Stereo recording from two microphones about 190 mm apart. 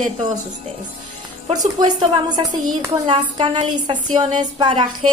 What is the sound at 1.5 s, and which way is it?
A woman's voice, 20° right (ahead or behind).